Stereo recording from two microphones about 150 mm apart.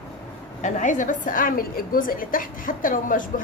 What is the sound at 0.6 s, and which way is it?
A woman's voice, 55° left (ahead or behind).